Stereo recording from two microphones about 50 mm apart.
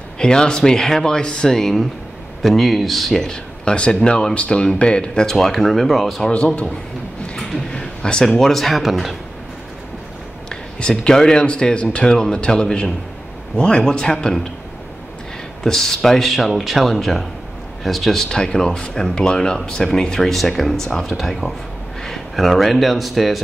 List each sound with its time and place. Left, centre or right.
0.2 s speech: centre
1.6 s speech: centre
6.3 s a man's voice: left
7.8 s a sound: centre
8.3 s speech: centre
10.5 s speech: centre
15.6 s a man's voice: centre